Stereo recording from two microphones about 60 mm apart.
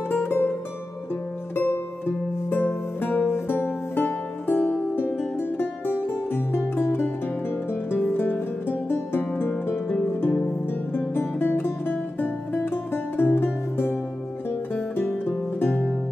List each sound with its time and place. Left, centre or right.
0.1 s music: left
1.5 s music: left
10.9 s music: left